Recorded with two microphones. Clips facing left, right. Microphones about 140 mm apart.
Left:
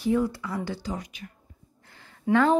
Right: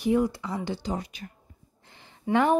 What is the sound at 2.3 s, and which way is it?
Speech, 15° right (ahead or behind).